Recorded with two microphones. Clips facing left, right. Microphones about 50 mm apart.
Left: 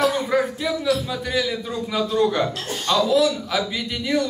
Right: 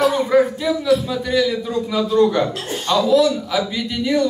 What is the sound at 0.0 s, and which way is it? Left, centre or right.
A man's voice, centre.